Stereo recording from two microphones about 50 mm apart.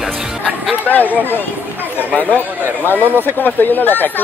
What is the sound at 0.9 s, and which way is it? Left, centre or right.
Speech, left.